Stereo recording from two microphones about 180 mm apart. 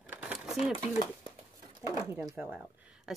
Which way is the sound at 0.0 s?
10° right (ahead or behind).